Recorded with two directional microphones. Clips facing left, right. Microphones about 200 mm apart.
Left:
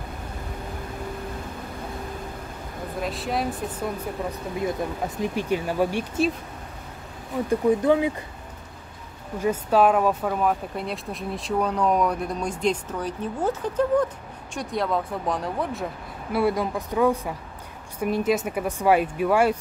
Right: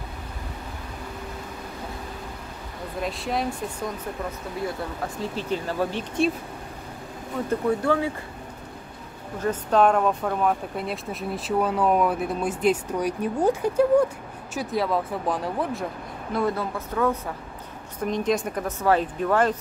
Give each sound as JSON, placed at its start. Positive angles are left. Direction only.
{"t": 3.0, "sound": "speech", "side_deg": 0}
{"t": 4.6, "sound": "speech", "side_deg": 20}
{"t": 7.4, "sound": "speech", "side_deg": 15}
{"t": 9.4, "sound": "speech", "side_deg": 5}